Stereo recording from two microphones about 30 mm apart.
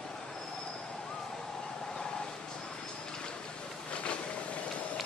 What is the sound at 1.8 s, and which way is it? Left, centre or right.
Vehicle, left.